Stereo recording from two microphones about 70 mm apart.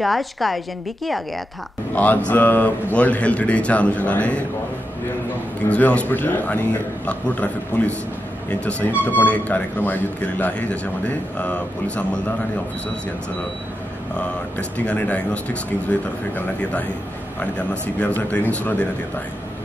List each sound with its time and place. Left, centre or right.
0.0 s a woman's voice: centre
2.0 s speech: left
5.7 s speech: left
14.1 s speech: centre